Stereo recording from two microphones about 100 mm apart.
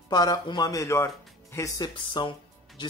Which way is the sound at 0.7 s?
30° left (ahead or behind).